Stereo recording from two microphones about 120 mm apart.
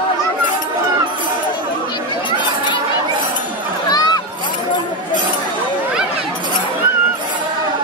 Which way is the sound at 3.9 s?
35° left (ahead or behind).